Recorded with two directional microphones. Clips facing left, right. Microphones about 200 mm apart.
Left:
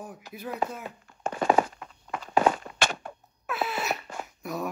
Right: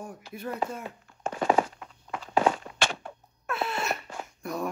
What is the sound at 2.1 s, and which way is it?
Walk, 50° left (ahead or behind).